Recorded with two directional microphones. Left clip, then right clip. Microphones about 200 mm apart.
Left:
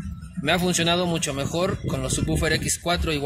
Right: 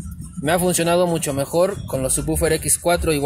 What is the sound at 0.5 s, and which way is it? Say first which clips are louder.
Speech: right 4 dB; 30° right (ahead or behind).